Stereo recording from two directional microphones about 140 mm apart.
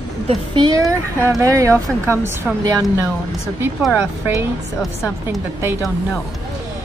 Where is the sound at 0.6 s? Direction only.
25° right (ahead or behind).